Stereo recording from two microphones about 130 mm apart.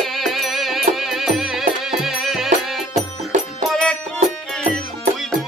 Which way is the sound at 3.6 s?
5° left (ahead or behind).